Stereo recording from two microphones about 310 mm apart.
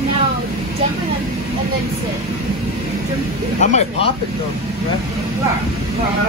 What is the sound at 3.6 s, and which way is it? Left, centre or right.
Speech, left.